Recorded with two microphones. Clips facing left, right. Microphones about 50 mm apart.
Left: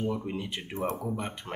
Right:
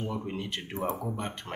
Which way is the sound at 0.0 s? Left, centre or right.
Centre.